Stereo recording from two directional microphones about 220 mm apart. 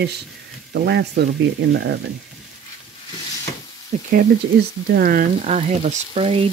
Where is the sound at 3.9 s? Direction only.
35° right (ahead or behind).